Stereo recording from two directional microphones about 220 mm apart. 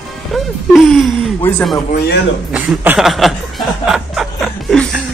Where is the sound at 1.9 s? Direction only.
45° left (ahead or behind).